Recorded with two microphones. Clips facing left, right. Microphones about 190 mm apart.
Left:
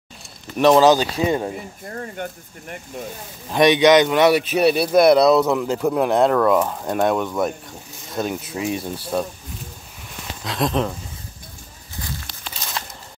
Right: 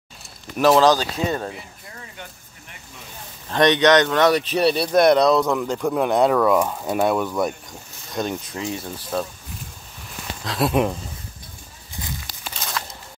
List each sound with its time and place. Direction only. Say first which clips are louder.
0.6 s speech: left 2 dB; centre (ahead or behind)
0.9 s speech: left 4 dB; 10° left (ahead or behind)
1.5 s speech: left 7 dB; 50° left (ahead or behind)
3.4 s speech: left 2 dB; 10° left (ahead or behind)
10.4 s speech: even; centre (ahead or behind)